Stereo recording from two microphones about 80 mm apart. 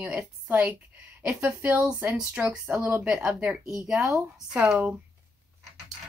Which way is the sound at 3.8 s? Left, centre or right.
Centre.